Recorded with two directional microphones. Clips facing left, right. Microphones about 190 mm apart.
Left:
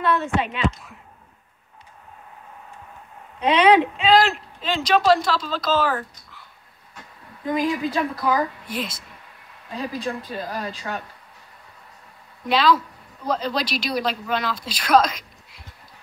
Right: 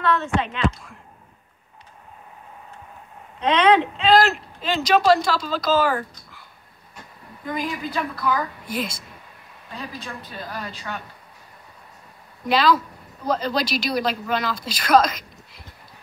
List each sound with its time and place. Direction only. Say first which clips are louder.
0.0 s speech: even; 10° left (ahead or behind)
3.3 s speech: left 1 dB; 10° left (ahead or behind)
4.2 s speech: right 1 dB; 5° right (ahead or behind)
7.5 s speech: left 5 dB; 35° left (ahead or behind)
9.8 s speech: left 7 dB; 35° left (ahead or behind)
12.4 s speech: even; centre (ahead or behind)